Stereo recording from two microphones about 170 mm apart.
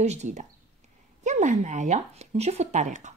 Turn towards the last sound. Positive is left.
turn(degrees=-45)  # may be behind; listen again after turning